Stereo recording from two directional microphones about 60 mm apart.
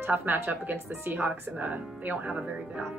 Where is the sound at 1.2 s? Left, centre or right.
Right.